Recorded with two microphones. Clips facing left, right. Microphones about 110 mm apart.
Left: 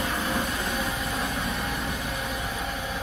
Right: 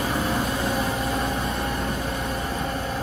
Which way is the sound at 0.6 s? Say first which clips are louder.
Right 5 dB; 25° right (ahead or behind).